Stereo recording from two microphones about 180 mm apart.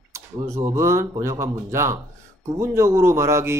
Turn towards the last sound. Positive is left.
turn(degrees=-15)  # may be behind; listen again after turning